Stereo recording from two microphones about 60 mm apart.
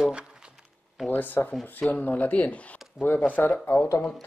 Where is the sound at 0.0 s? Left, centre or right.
Centre.